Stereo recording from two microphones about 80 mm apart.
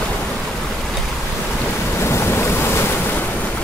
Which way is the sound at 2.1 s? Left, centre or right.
Left.